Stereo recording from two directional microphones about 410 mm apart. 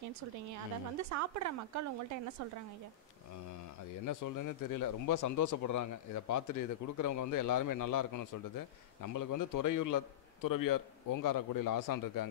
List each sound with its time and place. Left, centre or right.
1.1 s speech: right
4.0 s speech: left